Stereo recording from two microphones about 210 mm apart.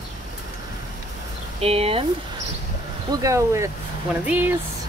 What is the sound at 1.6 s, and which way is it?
Speech, 30° right (ahead or behind).